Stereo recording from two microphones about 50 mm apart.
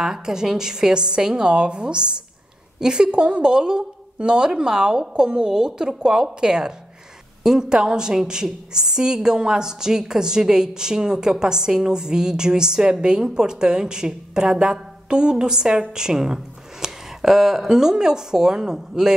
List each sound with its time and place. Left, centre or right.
0.0 s a woman's voice: centre